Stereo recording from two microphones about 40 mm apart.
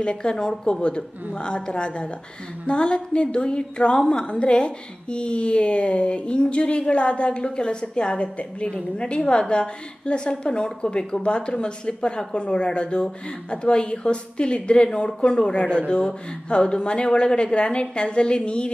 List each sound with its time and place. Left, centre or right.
0.0 s a woman's voice: left
4.3 s a woman's voice: left